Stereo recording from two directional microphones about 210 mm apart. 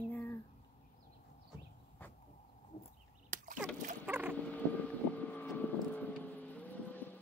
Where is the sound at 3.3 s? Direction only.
40° right (ahead or behind).